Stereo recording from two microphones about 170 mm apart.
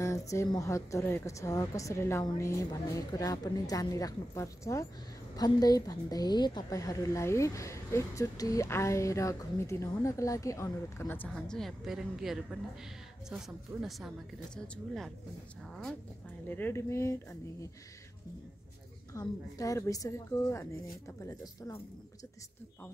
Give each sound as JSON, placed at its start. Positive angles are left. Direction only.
{"t": 0.0, "sound": "a woman's voice", "side_deg": 20}
{"t": 16.4, "sound": "a woman's voice", "side_deg": 10}
{"t": 19.1, "sound": "a woman's voice", "side_deg": 20}